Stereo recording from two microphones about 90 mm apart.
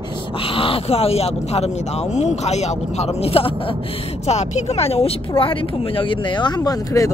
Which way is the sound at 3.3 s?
90° left.